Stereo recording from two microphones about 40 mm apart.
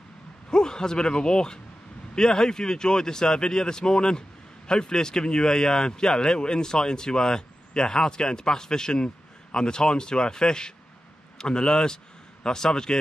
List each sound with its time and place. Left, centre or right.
0.5 s a man's voice: centre